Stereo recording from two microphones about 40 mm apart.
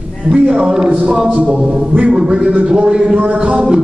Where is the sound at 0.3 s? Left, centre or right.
Right.